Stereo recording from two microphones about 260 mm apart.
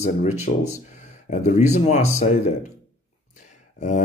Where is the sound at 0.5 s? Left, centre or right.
Left.